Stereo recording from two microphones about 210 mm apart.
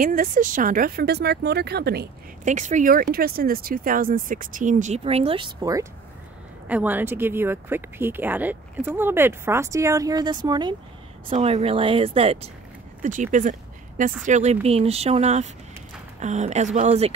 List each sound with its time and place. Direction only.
0.0 s speech: 40° right (ahead or behind)
2.4 s speech: 35° right (ahead or behind); by 10.8 s 20° right (ahead or behind)
11.2 s speech: 30° right (ahead or behind)